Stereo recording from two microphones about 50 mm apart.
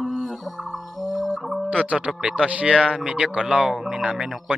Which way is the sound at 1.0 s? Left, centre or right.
Centre.